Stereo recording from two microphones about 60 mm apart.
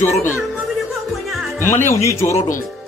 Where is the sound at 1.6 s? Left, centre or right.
Left.